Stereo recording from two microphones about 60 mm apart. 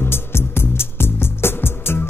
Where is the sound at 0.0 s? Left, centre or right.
Left.